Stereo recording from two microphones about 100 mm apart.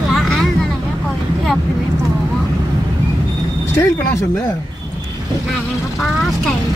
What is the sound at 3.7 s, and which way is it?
Speech, 25° left (ahead or behind).